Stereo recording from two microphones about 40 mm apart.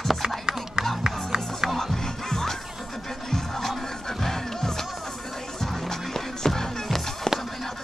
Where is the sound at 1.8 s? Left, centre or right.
Centre.